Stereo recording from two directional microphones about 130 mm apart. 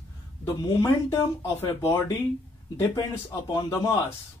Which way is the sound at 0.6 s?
25° left (ahead or behind).